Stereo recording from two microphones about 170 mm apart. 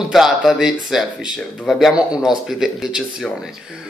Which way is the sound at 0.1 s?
Centre (ahead or behind).